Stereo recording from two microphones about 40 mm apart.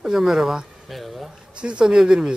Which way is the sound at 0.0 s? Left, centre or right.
Centre.